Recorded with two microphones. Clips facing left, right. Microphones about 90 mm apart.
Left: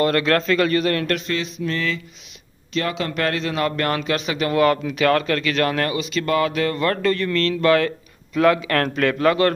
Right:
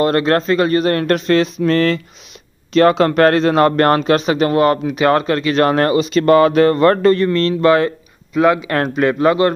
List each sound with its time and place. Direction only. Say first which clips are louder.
0.0 s speech: right 4 dB; 30° right (ahead or behind)
1.2 s mantra: right 11 dB; 55° right (ahead or behind)
2.7 s speech: right 12 dB; 50° right (ahead or behind); by 9.5 s 20° right (ahead or behind)